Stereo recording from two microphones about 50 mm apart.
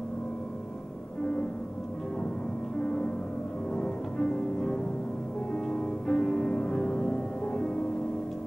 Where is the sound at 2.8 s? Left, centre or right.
Centre.